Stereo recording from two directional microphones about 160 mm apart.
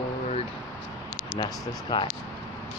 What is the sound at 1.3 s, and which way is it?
Speech, 30° left (ahead or behind).